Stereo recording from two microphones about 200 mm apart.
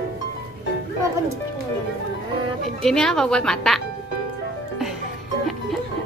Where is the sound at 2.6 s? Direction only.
5° left (ahead or behind).